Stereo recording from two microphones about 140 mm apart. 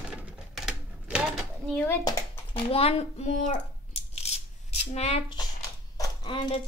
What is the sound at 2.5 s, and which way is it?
Speech, 45° left (ahead or behind).